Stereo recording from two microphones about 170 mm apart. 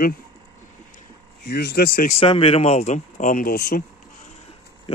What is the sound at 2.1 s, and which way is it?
Speech, 30° left (ahead or behind).